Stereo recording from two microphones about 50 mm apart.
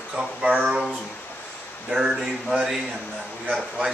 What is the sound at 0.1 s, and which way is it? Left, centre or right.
Speech, centre.